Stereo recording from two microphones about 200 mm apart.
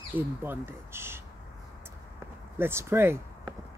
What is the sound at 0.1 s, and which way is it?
Speech, 10° right (ahead or behind).